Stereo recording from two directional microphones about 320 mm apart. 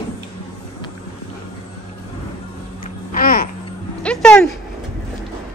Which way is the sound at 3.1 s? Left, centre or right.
Left.